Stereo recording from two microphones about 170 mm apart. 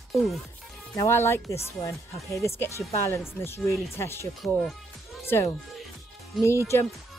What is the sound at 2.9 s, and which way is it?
Speech, 15° left (ahead or behind).